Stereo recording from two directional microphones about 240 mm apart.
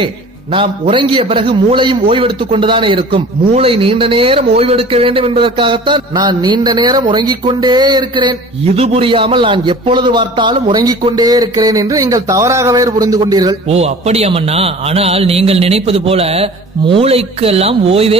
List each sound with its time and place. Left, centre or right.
0.6 s a man's voice: right